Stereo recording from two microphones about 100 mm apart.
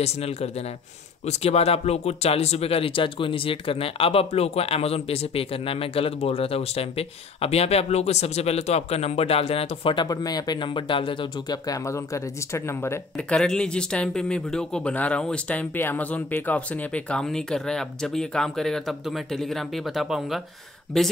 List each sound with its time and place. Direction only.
0.0 s speech: 90° left; by 9.9 s 70° left (ahead or behind)
9.9 s speech: 40° left (ahead or behind)
13.3 s speech: 5° left (ahead or behind)